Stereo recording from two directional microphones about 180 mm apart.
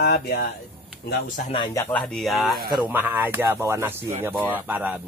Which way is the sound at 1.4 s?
25° left (ahead or behind).